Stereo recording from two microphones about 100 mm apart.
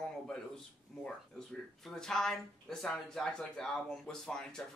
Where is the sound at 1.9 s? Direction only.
5° left (ahead or behind).